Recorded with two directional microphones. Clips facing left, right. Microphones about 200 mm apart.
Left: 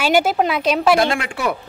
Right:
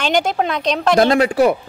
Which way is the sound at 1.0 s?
40° right (ahead or behind).